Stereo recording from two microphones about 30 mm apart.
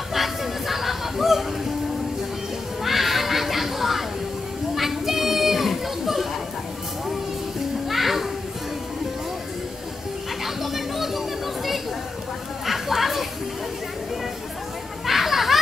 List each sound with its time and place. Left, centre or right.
0.1 s music: centre
2.8 s a sound: centre
4.7 s children playing: centre
7.9 s music: centre
10.4 s a sound: centre
12.6 s chatter: centre
15.0 s children playing: centre